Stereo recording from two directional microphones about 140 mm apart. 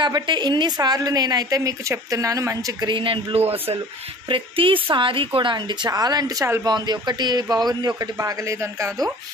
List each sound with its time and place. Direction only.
0.0 s a woman's voice: 30° right (ahead or behind)
2.9 s a woman's voice: 35° right (ahead or behind); by 8.9 s 20° right (ahead or behind)